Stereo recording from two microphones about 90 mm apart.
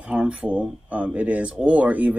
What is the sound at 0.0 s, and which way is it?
Speech, 15° right (ahead or behind).